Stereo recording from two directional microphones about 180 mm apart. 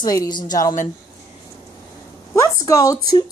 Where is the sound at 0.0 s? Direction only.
20° left (ahead or behind).